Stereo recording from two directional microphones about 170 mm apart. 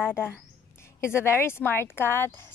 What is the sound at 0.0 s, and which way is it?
A woman's voice, 10° left (ahead or behind).